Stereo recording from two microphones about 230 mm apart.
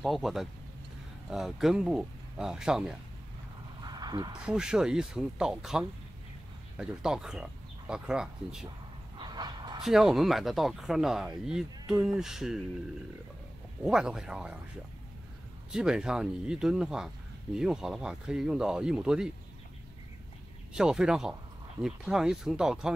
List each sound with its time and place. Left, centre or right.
0.0 s speech: centre
3.8 s a sound: centre
4.5 s speech: centre
9.2 s dog: centre
9.8 s speech: centre
13.8 s speech: centre
15.7 s speech: centre
20.7 s speech: centre